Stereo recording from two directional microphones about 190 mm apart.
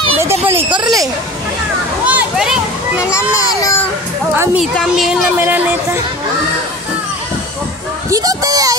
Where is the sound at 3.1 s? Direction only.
15° left (ahead or behind).